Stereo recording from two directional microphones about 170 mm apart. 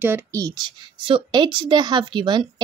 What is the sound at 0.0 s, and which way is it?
A woman's voice, 15° right (ahead or behind).